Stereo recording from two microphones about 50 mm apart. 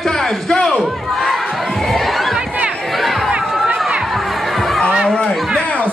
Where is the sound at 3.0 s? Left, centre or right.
Centre.